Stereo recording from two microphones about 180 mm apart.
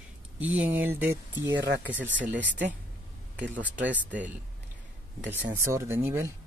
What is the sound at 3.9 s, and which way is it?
Speech, 10° right (ahead or behind).